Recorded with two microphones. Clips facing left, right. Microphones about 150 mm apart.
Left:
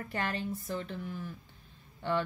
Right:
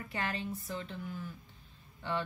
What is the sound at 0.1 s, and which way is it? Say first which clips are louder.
Speech: left 2 dB; 50° left (ahead or behind).